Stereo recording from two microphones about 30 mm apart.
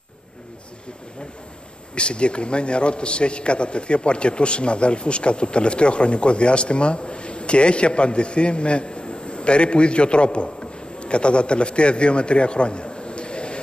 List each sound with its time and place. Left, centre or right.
2.0 s a man's voice: left